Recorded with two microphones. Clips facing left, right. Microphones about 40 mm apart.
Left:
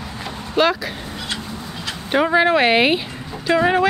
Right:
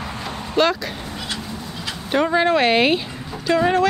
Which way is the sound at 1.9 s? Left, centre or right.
Centre.